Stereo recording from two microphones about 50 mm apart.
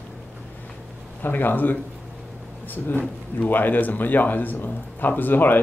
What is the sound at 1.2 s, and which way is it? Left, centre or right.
Speech, left.